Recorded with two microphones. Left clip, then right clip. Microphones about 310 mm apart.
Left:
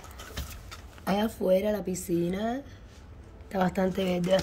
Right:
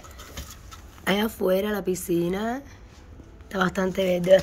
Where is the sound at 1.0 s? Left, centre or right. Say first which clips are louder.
Right 3 dB; centre.